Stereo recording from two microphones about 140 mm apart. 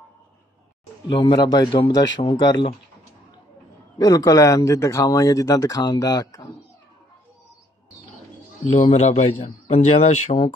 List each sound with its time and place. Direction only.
1.0 s a man's voice: 35° left (ahead or behind)
4.0 s speech: 25° left (ahead or behind)
8.7 s a man's voice: 60° left (ahead or behind)